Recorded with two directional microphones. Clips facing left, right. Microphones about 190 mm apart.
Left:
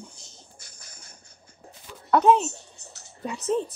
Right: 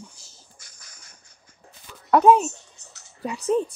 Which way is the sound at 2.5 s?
35° left (ahead or behind).